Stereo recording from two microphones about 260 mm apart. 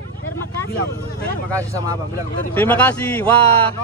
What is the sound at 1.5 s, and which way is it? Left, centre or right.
Speech, centre.